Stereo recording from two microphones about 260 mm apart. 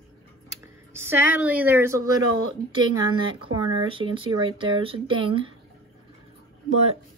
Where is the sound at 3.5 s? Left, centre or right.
Centre.